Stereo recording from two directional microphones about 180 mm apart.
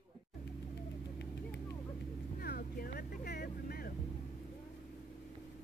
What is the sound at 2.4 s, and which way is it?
Vehicle, 60° left (ahead or behind).